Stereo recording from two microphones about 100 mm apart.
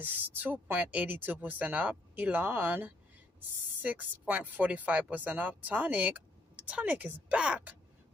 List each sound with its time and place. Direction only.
0.0 s speech: 20° right (ahead or behind)